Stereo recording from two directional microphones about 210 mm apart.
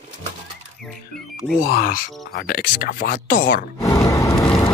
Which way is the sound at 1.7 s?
45° left (ahead or behind).